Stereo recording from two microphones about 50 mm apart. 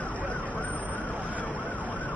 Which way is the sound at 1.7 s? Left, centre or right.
Left.